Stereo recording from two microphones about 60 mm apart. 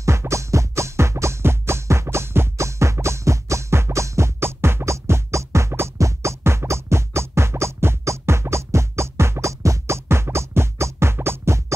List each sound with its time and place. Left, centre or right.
0.3 s music: right